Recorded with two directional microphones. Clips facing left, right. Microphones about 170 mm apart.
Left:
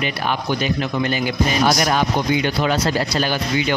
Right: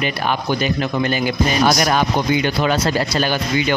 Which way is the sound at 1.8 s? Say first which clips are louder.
Right 1 dB; 60° right (ahead or behind).